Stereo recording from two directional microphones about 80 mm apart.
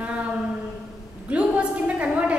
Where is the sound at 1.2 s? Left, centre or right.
Centre.